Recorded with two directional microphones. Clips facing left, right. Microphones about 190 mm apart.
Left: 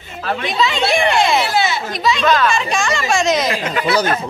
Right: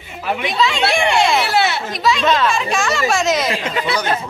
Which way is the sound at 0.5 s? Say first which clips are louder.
Left 1 dB; centre (ahead or behind).